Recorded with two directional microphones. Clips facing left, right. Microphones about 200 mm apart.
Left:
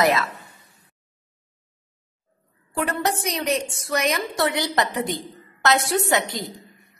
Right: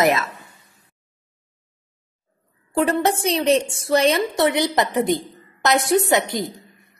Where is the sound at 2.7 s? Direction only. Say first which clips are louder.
Right 5 dB; 25° right (ahead or behind).